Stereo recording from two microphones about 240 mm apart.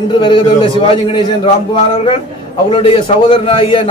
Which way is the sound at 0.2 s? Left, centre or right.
Centre.